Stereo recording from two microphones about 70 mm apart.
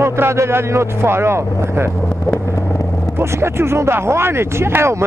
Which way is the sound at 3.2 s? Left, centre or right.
Right.